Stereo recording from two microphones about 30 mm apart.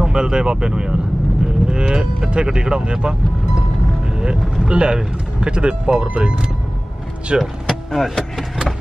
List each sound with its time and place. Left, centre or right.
0.0 s speech: right
4.6 s speech: right
7.6 s speech: centre